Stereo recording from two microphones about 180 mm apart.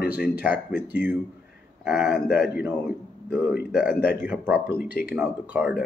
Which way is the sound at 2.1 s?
55° left (ahead or behind).